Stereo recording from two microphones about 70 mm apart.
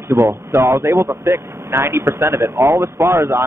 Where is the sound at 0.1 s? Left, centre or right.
Right.